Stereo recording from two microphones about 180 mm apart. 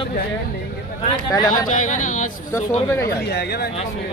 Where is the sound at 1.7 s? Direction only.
45° left (ahead or behind).